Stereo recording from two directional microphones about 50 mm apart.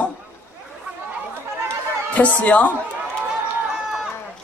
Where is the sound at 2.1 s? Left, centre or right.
Left.